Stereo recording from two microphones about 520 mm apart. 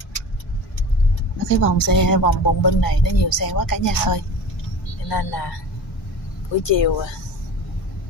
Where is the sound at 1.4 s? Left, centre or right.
Left.